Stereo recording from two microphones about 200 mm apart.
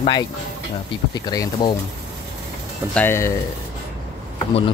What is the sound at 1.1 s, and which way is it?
Speech, 20° left (ahead or behind).